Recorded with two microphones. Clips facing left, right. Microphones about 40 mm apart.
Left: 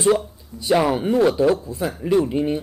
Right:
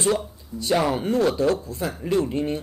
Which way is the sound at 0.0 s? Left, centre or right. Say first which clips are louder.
Left 5 dB; centre.